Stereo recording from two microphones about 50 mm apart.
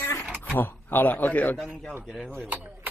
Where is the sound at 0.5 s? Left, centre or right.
Left.